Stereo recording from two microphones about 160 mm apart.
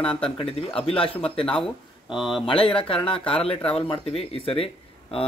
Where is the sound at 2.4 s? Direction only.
35° left (ahead or behind).